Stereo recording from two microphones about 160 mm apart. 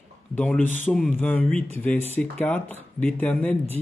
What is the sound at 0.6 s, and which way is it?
Speech, 50° left (ahead or behind).